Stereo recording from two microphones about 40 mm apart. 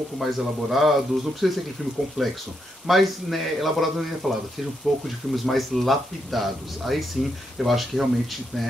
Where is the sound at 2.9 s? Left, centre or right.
Centre.